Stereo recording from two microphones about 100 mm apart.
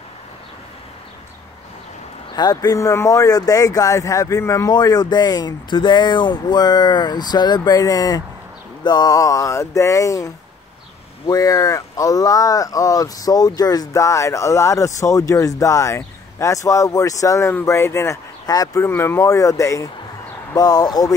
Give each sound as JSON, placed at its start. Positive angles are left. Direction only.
{"t": 2.3, "sound": "speech", "side_deg": 40}
{"t": 18.9, "sound": "speech", "side_deg": 25}